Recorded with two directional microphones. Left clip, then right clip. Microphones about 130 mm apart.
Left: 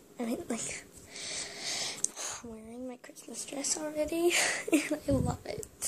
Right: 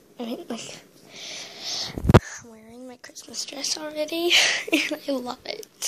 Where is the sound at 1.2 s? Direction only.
15° left (ahead or behind).